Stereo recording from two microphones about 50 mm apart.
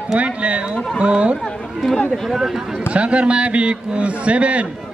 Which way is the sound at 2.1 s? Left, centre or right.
Centre.